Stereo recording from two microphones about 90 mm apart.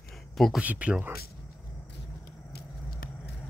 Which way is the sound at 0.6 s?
15° right (ahead or behind).